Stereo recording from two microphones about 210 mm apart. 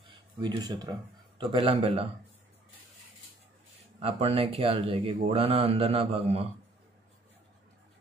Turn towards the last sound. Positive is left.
turn(degrees=-30)  # may be behind; listen again after turning